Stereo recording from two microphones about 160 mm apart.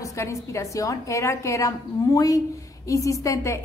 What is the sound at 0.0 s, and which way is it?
A woman's voice, 20° left (ahead or behind).